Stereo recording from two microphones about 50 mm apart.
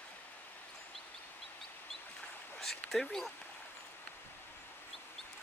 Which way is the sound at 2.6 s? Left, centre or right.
Centre.